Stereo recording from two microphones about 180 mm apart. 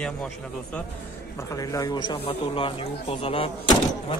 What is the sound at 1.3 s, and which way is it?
Speech, 15° left (ahead or behind).